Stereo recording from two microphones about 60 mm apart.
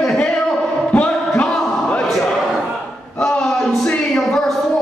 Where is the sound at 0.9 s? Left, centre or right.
Left.